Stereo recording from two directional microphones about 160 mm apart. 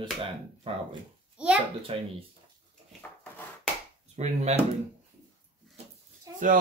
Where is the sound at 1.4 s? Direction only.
5° right (ahead or behind).